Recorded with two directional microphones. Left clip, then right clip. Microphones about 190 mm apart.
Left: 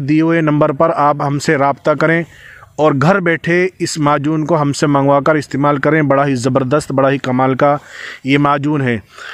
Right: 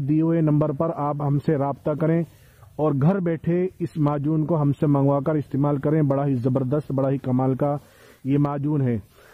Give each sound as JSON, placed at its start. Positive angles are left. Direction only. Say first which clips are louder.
{"t": 0.1, "sound": "speech", "louder": "left 9 dB", "side_deg": 10}
{"t": 7.0, "sound": "speech", "louder": "left 11 dB", "side_deg": 10}